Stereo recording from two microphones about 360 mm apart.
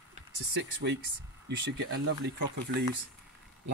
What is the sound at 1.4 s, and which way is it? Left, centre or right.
Speech, right.